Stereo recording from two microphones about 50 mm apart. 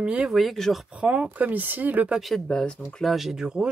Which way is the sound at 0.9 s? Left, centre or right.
Right.